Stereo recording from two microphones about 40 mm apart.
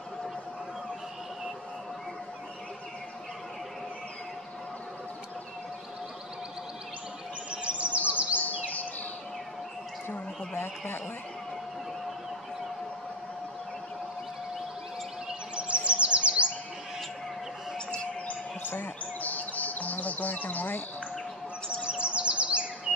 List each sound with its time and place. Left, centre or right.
7.6 s chirp: right
15.5 s chirp: right
18.2 s chirp: left
21.8 s chirp: right